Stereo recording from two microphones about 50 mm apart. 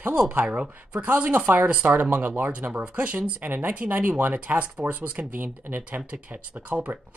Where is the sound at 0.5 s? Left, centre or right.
Right.